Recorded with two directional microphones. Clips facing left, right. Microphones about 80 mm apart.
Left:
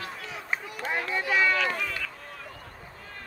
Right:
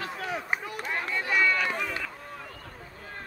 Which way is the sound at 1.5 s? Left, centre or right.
Centre.